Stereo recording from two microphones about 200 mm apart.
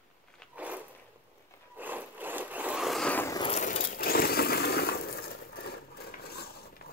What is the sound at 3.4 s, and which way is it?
Vehicle, 35° left (ahead or behind).